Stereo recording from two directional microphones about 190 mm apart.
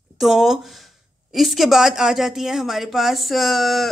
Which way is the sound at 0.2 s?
Centre (ahead or behind).